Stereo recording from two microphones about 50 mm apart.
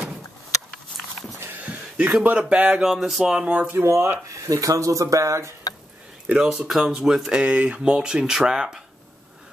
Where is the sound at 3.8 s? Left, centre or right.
Right.